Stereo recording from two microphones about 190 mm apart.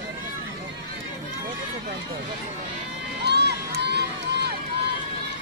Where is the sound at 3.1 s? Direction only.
60° right (ahead or behind).